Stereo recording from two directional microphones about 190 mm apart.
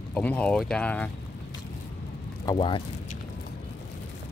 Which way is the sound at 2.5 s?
25° left (ahead or behind).